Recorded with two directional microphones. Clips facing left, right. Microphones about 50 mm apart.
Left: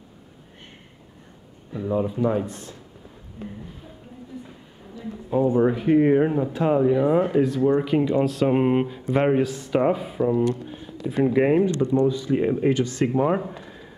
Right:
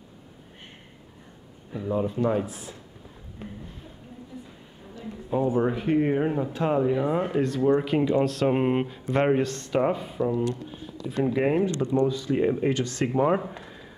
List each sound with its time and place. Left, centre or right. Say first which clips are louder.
1.8 s speech: left 2 dB; centre
5.3 s speech: left 4 dB; centre
13.0 s speech: even; centre